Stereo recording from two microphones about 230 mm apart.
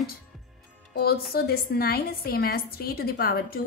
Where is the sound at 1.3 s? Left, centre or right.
Left.